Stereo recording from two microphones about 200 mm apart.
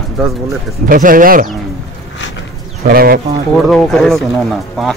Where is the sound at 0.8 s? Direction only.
45° right (ahead or behind).